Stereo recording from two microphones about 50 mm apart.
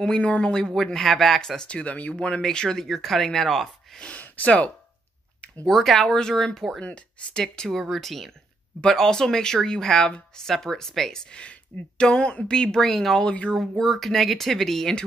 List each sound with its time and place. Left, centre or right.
0.0 s speech: centre
1.7 s speech: left; by 4.0 s centre
4.0 s speech: left
5.7 s speech: centre
6.8 s speech: left
7.4 s speech: centre